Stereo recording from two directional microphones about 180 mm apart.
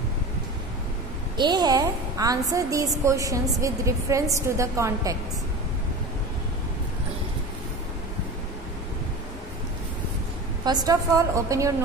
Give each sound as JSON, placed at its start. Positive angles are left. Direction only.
{"t": 1.3, "sound": "a woman's voice", "side_deg": -25}
{"t": 10.6, "sound": "a woman's voice", "side_deg": -20}